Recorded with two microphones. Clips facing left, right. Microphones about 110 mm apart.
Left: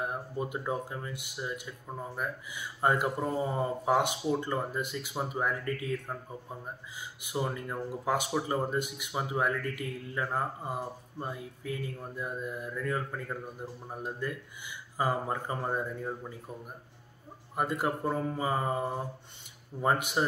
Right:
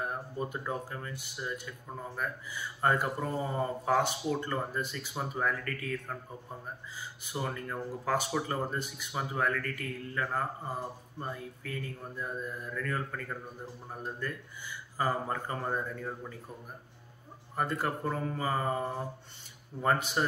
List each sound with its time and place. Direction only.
0.0 s speech: 15° left (ahead or behind)
17.6 s speech: 15° left (ahead or behind)